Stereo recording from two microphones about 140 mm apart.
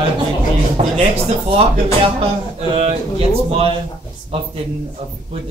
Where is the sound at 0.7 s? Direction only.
45° right (ahead or behind).